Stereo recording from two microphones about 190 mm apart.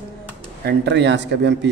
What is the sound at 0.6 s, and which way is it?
Speech, 65° right (ahead or behind).